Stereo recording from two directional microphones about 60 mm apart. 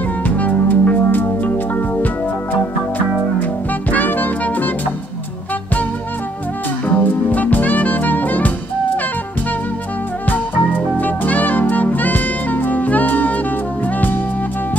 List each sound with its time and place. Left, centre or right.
0.2 s music: left
3.9 s music: left
7.0 s music: left
10.2 s music: left